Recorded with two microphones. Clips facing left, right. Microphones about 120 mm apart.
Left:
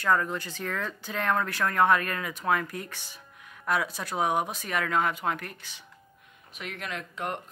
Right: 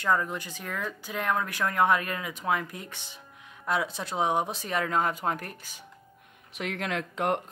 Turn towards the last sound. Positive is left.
turn(degrees=-90)